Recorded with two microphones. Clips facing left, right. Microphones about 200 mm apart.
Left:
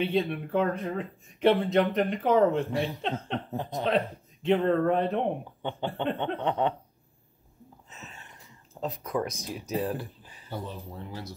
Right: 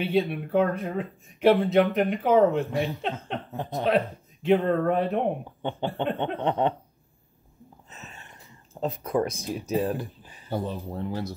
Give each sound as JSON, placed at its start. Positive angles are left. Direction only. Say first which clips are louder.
{"t": 0.0, "sound": "speech", "louder": "right 2 dB", "side_deg": -5}
{"t": 8.8, "sound": "speech", "louder": "right 4 dB", "side_deg": -30}
{"t": 10.5, "sound": "speech", "louder": "right 7 dB", "side_deg": -50}